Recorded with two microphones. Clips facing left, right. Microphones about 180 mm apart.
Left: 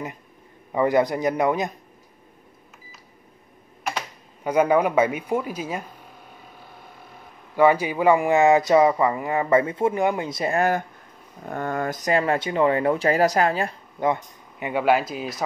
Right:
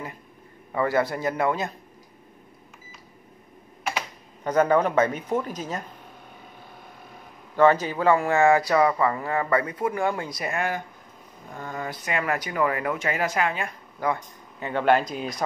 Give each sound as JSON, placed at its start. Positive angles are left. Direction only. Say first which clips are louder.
{"t": 0.7, "sound": "speech", "louder": "left 4 dB", "side_deg": 20}
{"t": 4.5, "sound": "speech", "louder": "left 1 dB", "side_deg": 10}
{"t": 7.5, "sound": "speech", "louder": "left 1 dB", "side_deg": 10}
{"t": 11.4, "sound": "speech", "louder": "left 7 dB", "side_deg": 60}
{"t": 13.9, "sound": "speech", "louder": "left 3 dB", "side_deg": 20}